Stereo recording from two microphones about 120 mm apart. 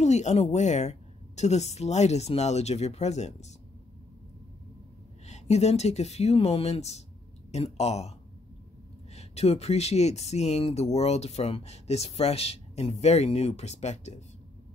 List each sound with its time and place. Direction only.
0.0 s a woman's voice: 70° left (ahead or behind)
5.2 s speech: 65° left (ahead or behind)
9.1 s speech: 60° left (ahead or behind)